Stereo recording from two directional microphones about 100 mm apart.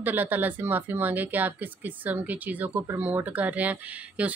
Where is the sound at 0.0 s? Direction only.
20° right (ahead or behind).